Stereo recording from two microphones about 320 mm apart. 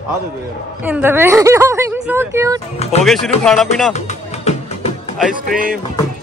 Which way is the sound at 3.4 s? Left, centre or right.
Centre.